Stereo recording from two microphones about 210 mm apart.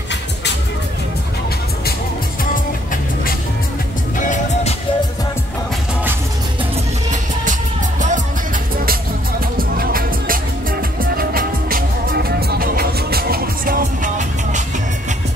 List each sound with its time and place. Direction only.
4.2 s music: 35° left (ahead or behind)
9.6 s music: 45° right (ahead or behind)